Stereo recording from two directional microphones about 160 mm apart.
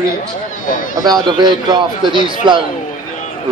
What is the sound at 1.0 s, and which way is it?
A man's voice, 25° right (ahead or behind).